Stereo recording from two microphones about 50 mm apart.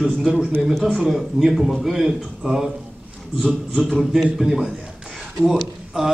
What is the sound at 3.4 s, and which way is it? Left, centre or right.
Speech, centre.